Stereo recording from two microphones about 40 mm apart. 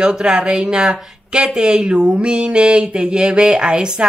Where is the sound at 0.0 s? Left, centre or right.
Right.